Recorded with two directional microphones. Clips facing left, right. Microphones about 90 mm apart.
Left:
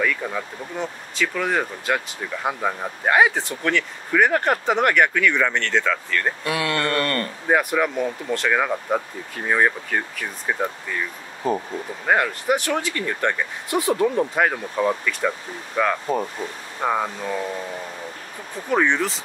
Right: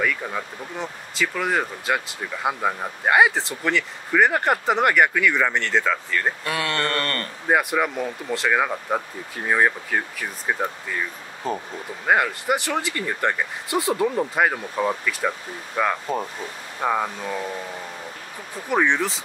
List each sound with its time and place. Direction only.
0.0 s speech: 10° right (ahead or behind)
6.4 s speech: 35° right (ahead or behind)
6.8 s speech: 25° left (ahead or behind)
7.4 s speech: 5° right (ahead or behind)
12.1 s speech: 5° right (ahead or behind)
18.7 s speech: centre (ahead or behind)